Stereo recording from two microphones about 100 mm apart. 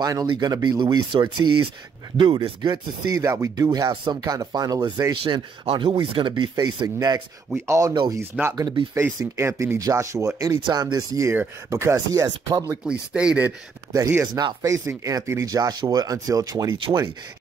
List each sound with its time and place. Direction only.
0.0 s speech: 40° right (ahead or behind)
3.9 s speech: 55° right (ahead or behind)
4.2 s speech: 40° right (ahead or behind)
5.1 s speech: 60° right (ahead or behind)
6.5 s speech: 35° right (ahead or behind)
7.5 s speech: 30° right (ahead or behind)
8.3 s speech: centre (ahead or behind)
9.0 s speech: 25° right (ahead or behind)
10.6 s speech: 45° right (ahead or behind)
12.8 s speech: 10° right (ahead or behind)
14.4 s speech: 30° right (ahead or behind)
16.7 s speech: 55° right (ahead or behind)